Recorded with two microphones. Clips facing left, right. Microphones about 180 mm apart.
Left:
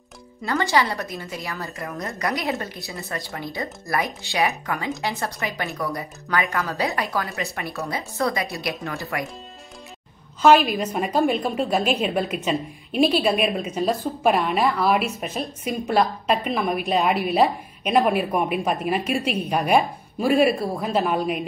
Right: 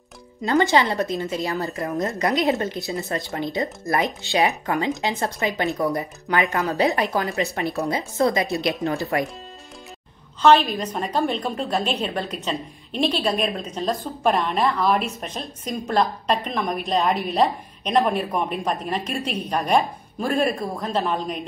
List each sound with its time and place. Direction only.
0.4 s speech: 20° right (ahead or behind)
10.4 s a woman's voice: 10° left (ahead or behind)